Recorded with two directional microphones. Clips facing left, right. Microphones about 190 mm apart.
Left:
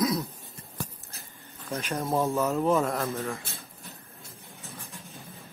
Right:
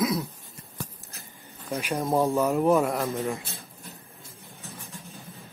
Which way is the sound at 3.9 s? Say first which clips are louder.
Right 1 dB; centre (ahead or behind).